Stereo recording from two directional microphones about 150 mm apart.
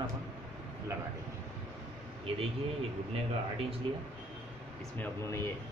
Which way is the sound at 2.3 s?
40° right (ahead or behind).